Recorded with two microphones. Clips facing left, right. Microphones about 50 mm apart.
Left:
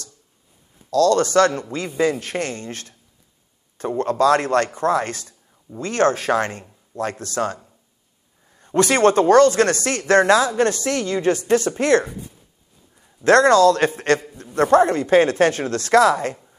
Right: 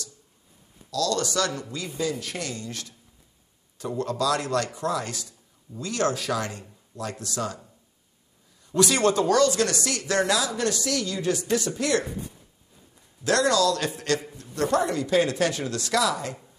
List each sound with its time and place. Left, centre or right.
0.8 s speech: left
13.2 s speech: left